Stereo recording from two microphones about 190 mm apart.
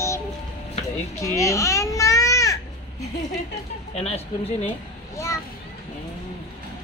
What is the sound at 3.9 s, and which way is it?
Speech, 30° left (ahead or behind).